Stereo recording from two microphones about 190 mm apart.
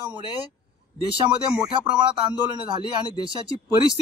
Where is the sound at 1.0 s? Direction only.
25° right (ahead or behind).